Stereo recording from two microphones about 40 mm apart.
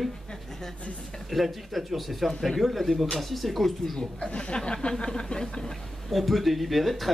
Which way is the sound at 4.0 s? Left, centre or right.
Left.